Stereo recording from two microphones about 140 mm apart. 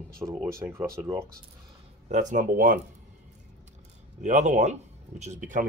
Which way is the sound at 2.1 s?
60° right (ahead or behind).